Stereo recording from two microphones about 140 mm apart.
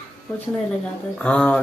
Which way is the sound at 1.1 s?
5° left (ahead or behind).